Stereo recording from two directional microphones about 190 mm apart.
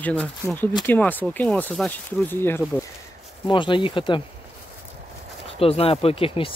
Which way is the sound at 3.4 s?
25° left (ahead or behind).